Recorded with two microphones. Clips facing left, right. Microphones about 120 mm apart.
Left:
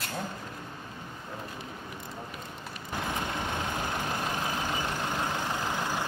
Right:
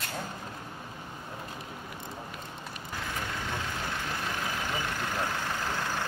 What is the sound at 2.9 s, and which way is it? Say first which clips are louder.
Vehicle: left 4 dB; 20° left (ahead or behind).